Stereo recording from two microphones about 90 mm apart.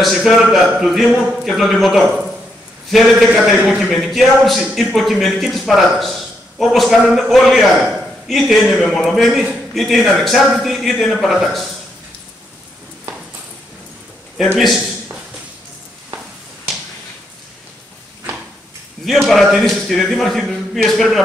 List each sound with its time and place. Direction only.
0.0 s a man's voice: centre (ahead or behind)
3.4 s a man's voice: 5° right (ahead or behind)
14.6 s a man's voice: centre (ahead or behind)
19.0 s a man's voice: centre (ahead or behind)